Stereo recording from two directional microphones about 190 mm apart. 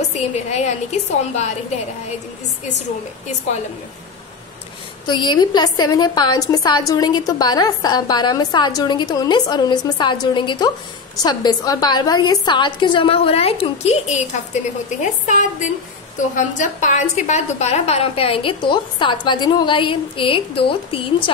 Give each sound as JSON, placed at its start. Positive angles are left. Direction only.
{"t": 0.1, "sound": "a woman's voice", "side_deg": 35}
{"t": 5.0, "sound": "a woman's voice", "side_deg": 25}